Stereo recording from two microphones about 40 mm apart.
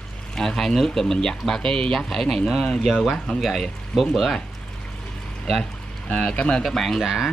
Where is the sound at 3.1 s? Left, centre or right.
Left.